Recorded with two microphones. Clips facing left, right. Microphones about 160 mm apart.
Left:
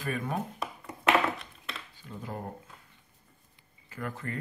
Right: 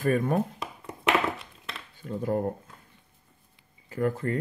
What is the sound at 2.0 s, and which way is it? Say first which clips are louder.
Speech: right 13 dB; 50° right (ahead or behind).